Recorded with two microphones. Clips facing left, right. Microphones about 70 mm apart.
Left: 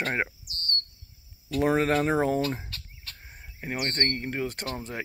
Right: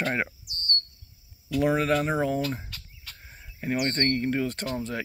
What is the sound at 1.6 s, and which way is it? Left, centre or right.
Speech, left.